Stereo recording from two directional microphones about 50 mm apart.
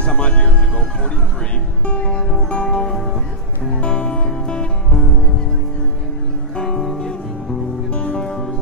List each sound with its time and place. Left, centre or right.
0.0 s music: left
1.9 s music: left
6.5 s music: centre
7.9 s music: left